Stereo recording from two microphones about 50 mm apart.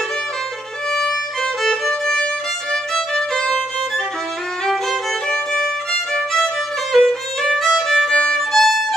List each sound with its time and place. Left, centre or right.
0.9 s violin: centre
2.7 s music: centre
5.3 s violin: centre
8.1 s violin: centre
8.4 s violin: centre